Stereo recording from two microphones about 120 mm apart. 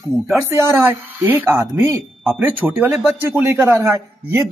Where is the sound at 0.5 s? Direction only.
20° right (ahead or behind).